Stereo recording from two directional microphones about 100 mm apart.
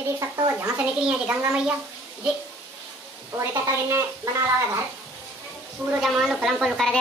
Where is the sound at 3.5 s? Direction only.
30° right (ahead or behind).